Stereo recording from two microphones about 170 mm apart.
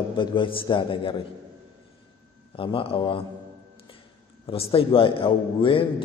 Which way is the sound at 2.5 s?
30° left (ahead or behind).